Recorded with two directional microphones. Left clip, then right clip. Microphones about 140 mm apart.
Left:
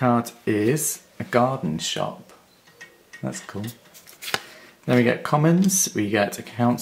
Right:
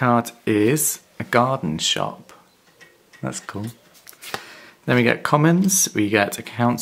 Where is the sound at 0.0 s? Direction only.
35° right (ahead or behind).